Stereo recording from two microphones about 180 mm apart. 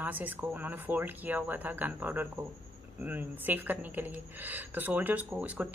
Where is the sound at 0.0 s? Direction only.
10° right (ahead or behind).